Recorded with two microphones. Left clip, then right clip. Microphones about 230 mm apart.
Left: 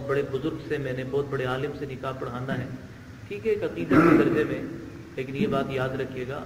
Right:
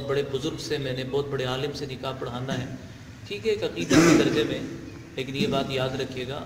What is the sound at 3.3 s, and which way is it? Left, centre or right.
A man's voice, right.